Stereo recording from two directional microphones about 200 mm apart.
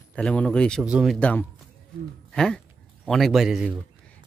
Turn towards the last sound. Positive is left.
turn(degrees=0)  # may be behind; listen again after turning